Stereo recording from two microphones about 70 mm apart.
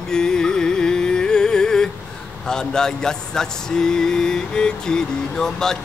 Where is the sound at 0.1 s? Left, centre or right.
Centre.